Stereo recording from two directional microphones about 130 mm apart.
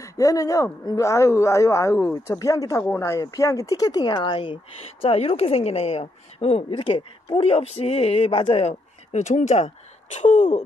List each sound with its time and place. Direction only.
0.0 s speech: 25° left (ahead or behind); by 4.6 s 40° left (ahead or behind)
5.0 s a man's voice: 50° left (ahead or behind); by 10.6 s 70° left (ahead or behind)